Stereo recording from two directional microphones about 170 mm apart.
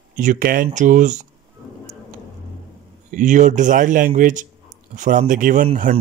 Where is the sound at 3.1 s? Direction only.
45° right (ahead or behind).